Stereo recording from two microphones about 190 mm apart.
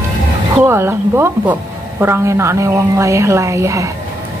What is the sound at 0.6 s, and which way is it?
A woman's voice, 10° right (ahead or behind).